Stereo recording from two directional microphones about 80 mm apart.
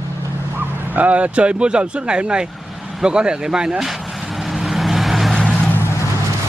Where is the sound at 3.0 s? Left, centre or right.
Centre.